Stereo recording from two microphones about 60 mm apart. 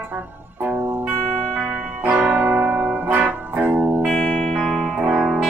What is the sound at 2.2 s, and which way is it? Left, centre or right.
Music, right.